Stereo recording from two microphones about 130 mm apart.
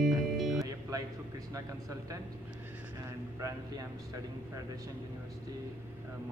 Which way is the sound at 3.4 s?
25° right (ahead or behind).